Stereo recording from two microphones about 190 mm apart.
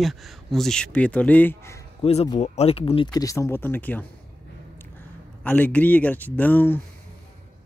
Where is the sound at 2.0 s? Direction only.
30° left (ahead or behind); by 4.1 s 10° left (ahead or behind).